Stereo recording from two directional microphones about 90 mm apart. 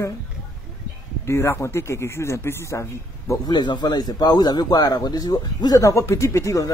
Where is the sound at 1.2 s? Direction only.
30° left (ahead or behind).